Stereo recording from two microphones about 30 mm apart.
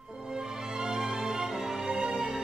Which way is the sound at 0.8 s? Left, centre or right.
Right.